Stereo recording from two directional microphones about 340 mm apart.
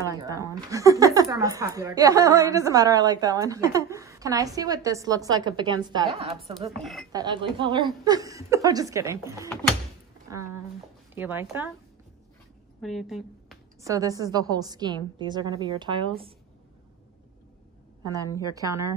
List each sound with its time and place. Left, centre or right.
0.1 s speech: centre
6.8 s speech: centre
7.1 s speech: centre
10.3 s a sound: centre
11.1 s speech: centre
12.8 s speech: centre
18.5 s speech: centre